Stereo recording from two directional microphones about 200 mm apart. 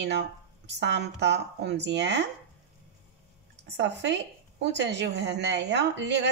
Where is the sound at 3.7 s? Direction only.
60° right (ahead or behind).